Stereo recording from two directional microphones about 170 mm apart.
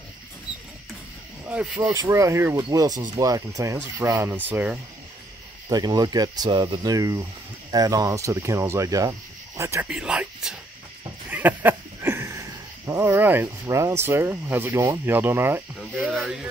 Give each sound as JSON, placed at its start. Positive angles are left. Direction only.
{"t": 0.5, "sound": "a sound", "side_deg": 25}
{"t": 1.8, "sound": "speech", "side_deg": -15}
{"t": 5.7, "sound": "speech", "side_deg": -20}
{"t": 9.8, "sound": "speech", "side_deg": -5}
{"t": 11.2, "sound": "a sound", "side_deg": -10}
{"t": 16.1, "sound": "speech", "side_deg": 0}